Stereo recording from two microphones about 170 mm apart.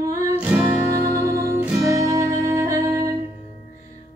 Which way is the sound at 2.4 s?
15° right (ahead or behind).